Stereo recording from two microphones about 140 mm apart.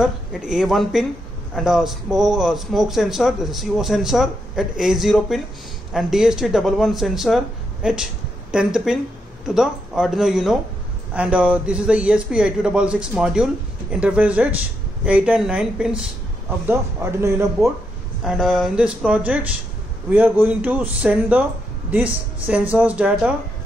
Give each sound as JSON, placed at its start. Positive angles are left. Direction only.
{"t": 0.0, "sound": "a man's voice", "side_deg": -5}
{"t": 16.4, "sound": "a man's voice", "side_deg": -15}
{"t": 18.2, "sound": "a man's voice", "side_deg": 0}